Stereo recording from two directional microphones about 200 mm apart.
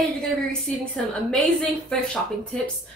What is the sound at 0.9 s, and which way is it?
A woman's voice, 5° left (ahead or behind).